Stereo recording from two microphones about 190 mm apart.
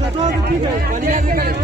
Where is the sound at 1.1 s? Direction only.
50° right (ahead or behind).